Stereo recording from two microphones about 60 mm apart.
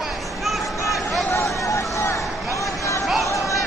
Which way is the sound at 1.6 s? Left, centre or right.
Left.